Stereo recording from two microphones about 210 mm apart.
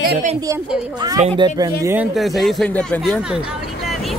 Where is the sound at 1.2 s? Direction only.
20° right (ahead or behind).